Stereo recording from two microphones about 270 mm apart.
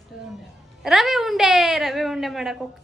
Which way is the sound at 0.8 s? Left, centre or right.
Centre.